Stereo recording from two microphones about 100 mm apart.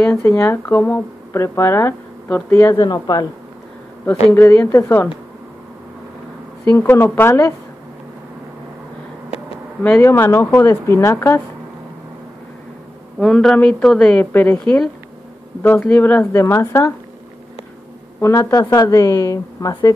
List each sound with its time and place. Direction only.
0.4 s speech: 25° left (ahead or behind)
2.7 s speech: 45° left (ahead or behind)
4.3 s speech: 25° left (ahead or behind)
6.7 s speech: 20° left (ahead or behind)
9.8 s speech: 25° left (ahead or behind)
13.2 s a woman's voice: 5° left (ahead or behind); by 16.9 s 25° left (ahead or behind)
18.2 s a woman's voice: 30° left (ahead or behind)